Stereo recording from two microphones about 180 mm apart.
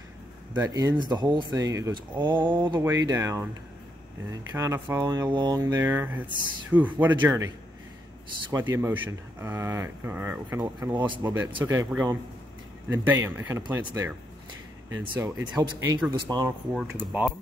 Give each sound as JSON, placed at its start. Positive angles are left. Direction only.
{"t": 0.6, "sound": "speech", "side_deg": -20}
{"t": 12.9, "sound": "speech", "side_deg": -15}
{"t": 15.1, "sound": "speech", "side_deg": -20}
{"t": 16.7, "sound": "speech", "side_deg": -5}